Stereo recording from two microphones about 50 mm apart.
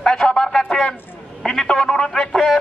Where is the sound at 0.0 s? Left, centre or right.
Centre.